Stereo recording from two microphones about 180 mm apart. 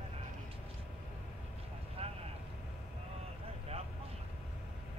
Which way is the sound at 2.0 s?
35° right (ahead or behind).